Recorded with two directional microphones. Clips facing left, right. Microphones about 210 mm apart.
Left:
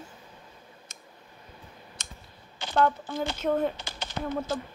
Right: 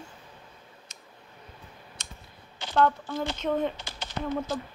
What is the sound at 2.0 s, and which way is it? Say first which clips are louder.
Computer keyboard: right 1 dB; 50° left (ahead or behind).